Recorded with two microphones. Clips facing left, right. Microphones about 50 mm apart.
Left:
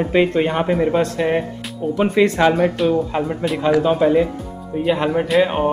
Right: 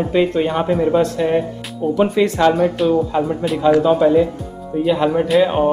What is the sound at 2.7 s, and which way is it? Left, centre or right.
Speech, centre.